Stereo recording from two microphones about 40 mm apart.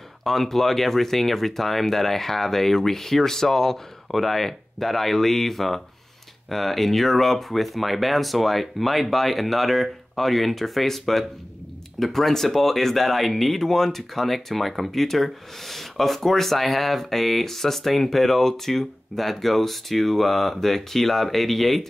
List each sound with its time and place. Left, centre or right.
0.2 s speech: centre